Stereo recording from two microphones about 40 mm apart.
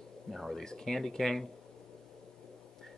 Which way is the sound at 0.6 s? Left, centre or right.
Centre.